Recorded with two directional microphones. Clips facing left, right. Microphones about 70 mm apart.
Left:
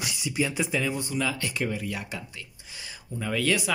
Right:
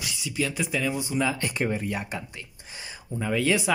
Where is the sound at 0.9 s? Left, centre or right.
Centre; by 2.2 s right.